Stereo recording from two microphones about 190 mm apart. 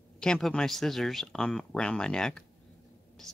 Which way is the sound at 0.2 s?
5° left (ahead or behind).